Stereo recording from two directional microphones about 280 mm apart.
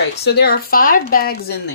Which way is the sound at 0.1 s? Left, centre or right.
Left.